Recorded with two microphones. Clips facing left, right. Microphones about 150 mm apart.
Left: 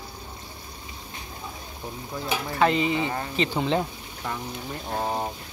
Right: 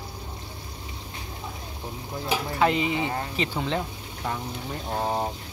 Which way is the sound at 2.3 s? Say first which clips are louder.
Even; 10° right (ahead or behind).